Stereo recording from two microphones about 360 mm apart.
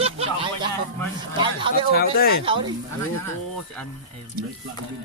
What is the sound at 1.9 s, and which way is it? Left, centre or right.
Speech, left.